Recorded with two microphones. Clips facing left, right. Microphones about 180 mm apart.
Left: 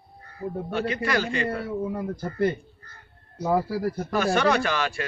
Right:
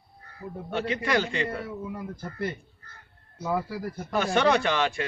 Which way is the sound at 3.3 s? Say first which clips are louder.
Left 5 dB; 35° left (ahead or behind).